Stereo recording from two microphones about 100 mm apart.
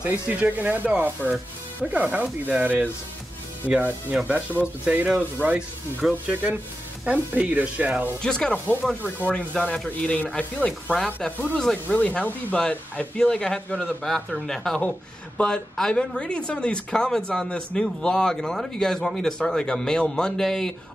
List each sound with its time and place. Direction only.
0.0 s speech: 15° right (ahead or behind)
7.1 s speech: 15° right (ahead or behind)
8.2 s speech: 10° left (ahead or behind)